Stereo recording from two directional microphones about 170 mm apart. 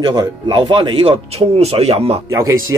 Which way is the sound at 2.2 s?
20° right (ahead or behind).